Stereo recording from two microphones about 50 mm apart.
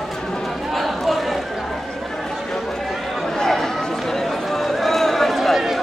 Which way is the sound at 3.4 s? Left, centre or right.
Centre.